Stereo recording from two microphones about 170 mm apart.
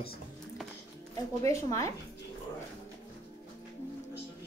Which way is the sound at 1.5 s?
20° left (ahead or behind).